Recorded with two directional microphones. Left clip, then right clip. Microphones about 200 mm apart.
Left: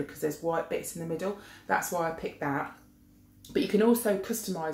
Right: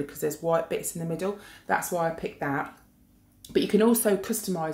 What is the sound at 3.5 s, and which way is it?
Speech, 40° right (ahead or behind).